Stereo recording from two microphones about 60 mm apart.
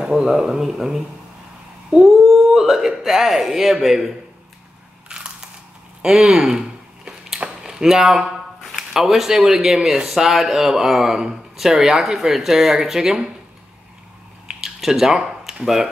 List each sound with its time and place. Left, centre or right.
0.0 s speech: centre
2.0 s speech: centre
5.1 s biting: centre
6.0 s speech: centre
7.3 s a sound: centre
7.8 s speech: centre
14.6 s a sound: centre
15.6 s speech: centre